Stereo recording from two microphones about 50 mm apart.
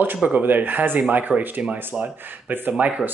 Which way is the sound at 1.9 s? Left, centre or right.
Centre.